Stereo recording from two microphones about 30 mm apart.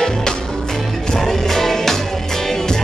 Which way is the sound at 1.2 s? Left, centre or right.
Centre.